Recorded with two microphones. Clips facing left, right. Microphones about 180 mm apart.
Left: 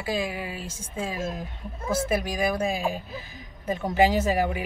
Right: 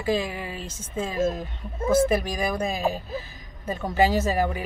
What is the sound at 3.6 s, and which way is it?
Speech, 15° left (ahead or behind).